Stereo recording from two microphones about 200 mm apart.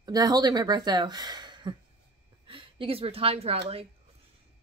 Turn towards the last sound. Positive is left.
turn(degrees=-30)  # may be behind; listen again after turning